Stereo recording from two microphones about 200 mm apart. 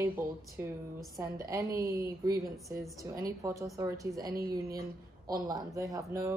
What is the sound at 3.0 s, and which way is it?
Speech, 15° right (ahead or behind).